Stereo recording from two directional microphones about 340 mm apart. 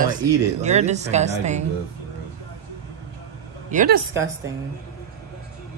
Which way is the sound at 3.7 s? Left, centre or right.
Right.